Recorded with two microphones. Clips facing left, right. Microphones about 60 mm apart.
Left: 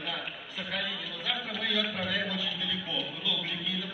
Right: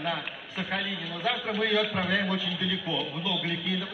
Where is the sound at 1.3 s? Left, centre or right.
Right.